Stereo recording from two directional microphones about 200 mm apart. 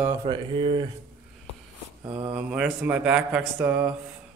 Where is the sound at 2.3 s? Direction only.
5° right (ahead or behind).